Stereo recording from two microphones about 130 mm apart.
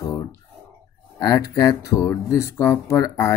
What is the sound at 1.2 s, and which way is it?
Speech, 30° left (ahead or behind).